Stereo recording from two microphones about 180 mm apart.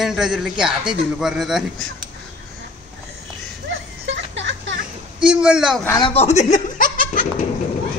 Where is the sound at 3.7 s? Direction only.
90° right.